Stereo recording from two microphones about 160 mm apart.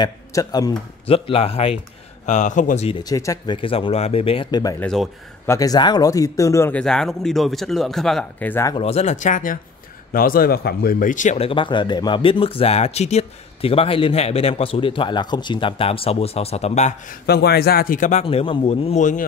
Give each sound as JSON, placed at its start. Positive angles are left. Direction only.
{"t": 0.0, "sound": "speech", "side_deg": 20}
{"t": 1.0, "sound": "speech", "side_deg": 35}
{"t": 2.2, "sound": "speech", "side_deg": 50}
{"t": 3.0, "sound": "speech", "side_deg": 20}
{"t": 3.6, "sound": "speech", "side_deg": 35}
{"t": 4.7, "sound": "speech", "side_deg": 5}
{"t": 5.5, "sound": "speech", "side_deg": 20}
{"t": 6.8, "sound": "speech", "side_deg": 5}
{"t": 8.7, "sound": "speech", "side_deg": 40}
{"t": 17.3, "sound": "speech", "side_deg": 85}
{"t": 18.2, "sound": "speech", "side_deg": 35}